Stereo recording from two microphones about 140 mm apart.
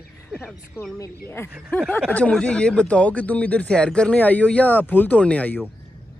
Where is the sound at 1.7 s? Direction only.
10° left (ahead or behind).